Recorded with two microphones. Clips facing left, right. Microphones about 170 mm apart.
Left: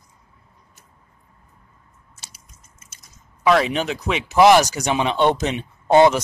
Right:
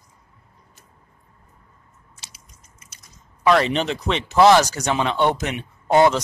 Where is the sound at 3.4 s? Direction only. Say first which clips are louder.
Even; centre (ahead or behind); by 5.6 s 25° left (ahead or behind).